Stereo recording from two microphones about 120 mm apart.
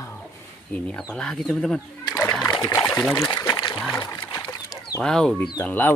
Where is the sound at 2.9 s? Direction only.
10° left (ahead or behind).